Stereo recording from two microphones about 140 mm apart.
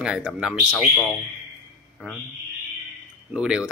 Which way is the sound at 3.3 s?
5° right (ahead or behind).